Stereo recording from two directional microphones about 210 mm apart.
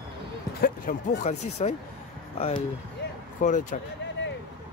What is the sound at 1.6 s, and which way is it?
Speech, 30° left (ahead or behind).